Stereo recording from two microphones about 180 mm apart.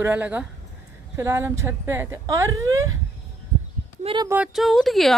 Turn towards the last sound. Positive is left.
turn(degrees=0)  # may be behind; listen again after turning